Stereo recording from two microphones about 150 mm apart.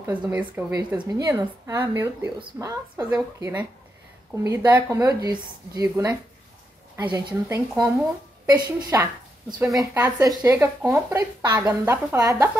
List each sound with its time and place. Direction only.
0.0 s speech: 10° right (ahead or behind); by 8.9 s 25° right (ahead or behind)
9.6 s speech: 15° right (ahead or behind)
11.4 s speech: 25° right (ahead or behind)